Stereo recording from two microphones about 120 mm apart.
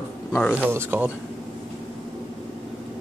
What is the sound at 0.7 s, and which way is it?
Speech, 20° right (ahead or behind).